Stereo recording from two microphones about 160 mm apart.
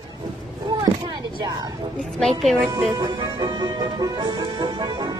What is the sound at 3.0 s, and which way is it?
Music, 25° right (ahead or behind).